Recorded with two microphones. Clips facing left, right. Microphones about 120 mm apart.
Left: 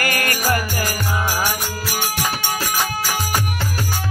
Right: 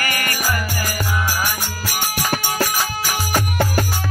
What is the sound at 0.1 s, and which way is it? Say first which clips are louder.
Music: left 3 dB; 55° left (ahead or behind).